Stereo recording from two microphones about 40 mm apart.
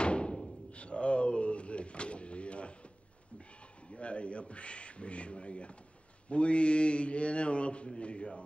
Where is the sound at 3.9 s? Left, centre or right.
Left.